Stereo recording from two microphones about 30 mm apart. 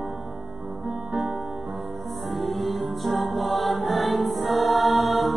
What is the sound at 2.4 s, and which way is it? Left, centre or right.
Music, centre.